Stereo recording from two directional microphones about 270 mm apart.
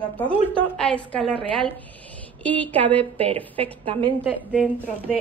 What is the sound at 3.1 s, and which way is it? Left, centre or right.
Speech, right.